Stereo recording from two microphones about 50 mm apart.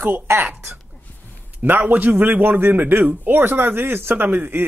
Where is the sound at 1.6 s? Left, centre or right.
Right.